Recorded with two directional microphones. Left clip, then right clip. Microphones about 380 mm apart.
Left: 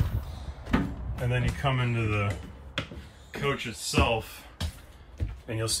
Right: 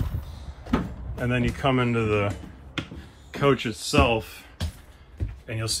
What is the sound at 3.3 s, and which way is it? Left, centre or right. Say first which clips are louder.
Speech: right 8 dB; centre.